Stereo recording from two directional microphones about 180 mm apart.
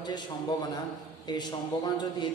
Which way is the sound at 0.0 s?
25° left (ahead or behind).